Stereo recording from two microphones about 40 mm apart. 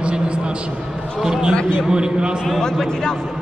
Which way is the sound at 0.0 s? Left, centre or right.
Right.